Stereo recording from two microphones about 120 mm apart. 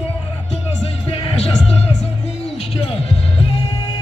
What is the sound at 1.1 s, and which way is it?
Music, 50° left (ahead or behind).